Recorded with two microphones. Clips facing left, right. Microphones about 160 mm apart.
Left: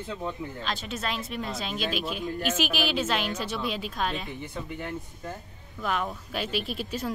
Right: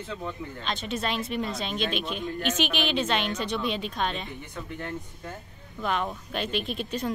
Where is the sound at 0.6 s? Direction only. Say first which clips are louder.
Right 4 dB; centre (ahead or behind).